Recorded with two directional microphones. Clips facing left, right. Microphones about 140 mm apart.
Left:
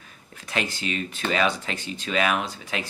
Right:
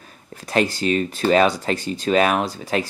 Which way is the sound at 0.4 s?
40° right (ahead or behind).